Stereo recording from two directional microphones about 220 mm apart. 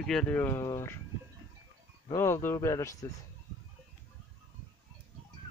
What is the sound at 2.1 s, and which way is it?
Speech, 10° left (ahead or behind).